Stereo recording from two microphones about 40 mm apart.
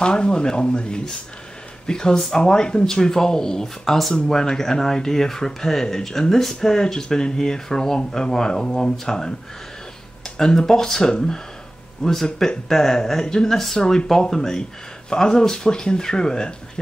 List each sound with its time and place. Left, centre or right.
0.0 s speech: left
10.3 s speech: centre